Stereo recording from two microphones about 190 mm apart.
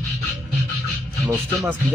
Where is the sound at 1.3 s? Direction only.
10° right (ahead or behind).